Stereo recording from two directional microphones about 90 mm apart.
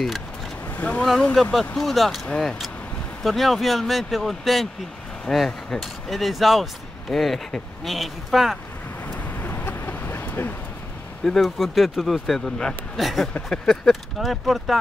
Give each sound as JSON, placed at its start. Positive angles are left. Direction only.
{"t": 0.7, "sound": "speech", "side_deg": 15}
{"t": 1.3, "sound": "speech", "side_deg": 5}
{"t": 9.0, "sound": "vehicle", "side_deg": 20}
{"t": 11.2, "sound": "speech", "side_deg": 0}